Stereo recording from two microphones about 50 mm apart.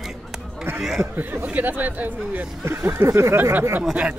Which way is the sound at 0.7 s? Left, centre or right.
Centre.